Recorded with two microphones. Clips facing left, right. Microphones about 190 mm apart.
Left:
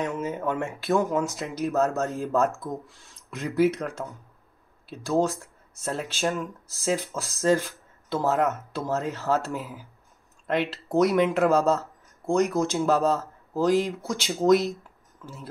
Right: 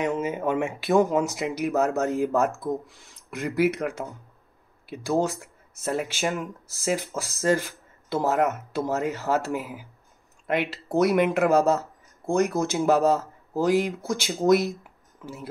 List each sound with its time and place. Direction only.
0.0 s speech: 15° right (ahead or behind)
6.8 s speech: 5° right (ahead or behind)